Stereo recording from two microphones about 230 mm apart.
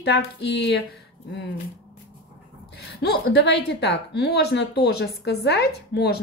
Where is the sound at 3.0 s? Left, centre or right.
Left.